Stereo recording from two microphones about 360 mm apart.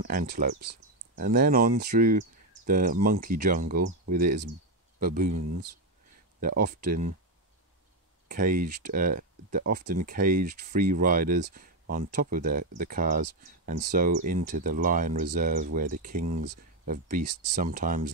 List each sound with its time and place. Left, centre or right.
0.0 s speech: right
5.0 s speech: right
6.4 s speech: right
8.3 s speech: right